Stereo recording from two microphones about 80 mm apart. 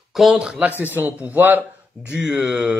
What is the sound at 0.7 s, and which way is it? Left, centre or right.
Speech, right.